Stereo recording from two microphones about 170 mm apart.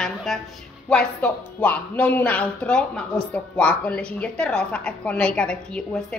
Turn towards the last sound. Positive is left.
turn(degrees=5)  # may be behind; listen again after turning